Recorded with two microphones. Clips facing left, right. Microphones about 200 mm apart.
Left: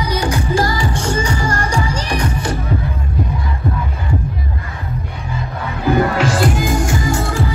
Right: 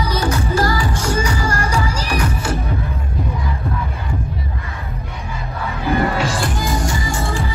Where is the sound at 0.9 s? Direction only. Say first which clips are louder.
Left 1 dB; 30° left (ahead or behind).